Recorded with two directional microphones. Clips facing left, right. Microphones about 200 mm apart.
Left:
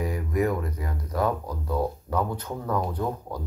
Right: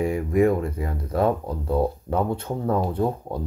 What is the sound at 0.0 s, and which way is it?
Speech, 25° right (ahead or behind).